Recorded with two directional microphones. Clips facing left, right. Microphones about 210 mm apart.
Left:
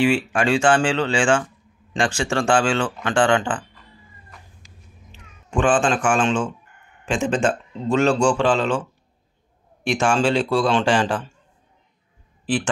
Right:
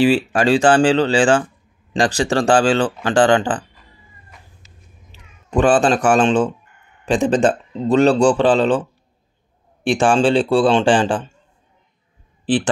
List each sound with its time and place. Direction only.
0.0 s speech: 35° right (ahead or behind)
5.1 s speech: 40° right (ahead or behind)
9.8 s speech: 30° right (ahead or behind)